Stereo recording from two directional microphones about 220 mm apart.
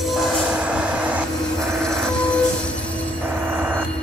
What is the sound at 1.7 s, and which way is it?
Music, centre (ahead or behind).